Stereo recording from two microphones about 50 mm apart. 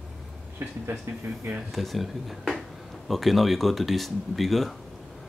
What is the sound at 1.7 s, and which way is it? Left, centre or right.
Speech, centre.